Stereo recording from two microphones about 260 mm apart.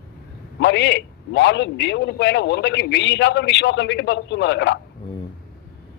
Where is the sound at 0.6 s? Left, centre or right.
Left.